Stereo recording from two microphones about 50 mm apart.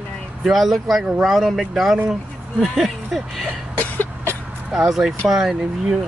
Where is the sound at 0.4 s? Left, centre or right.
Centre.